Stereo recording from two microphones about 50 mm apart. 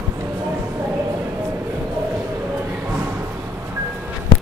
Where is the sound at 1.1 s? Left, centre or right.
Right.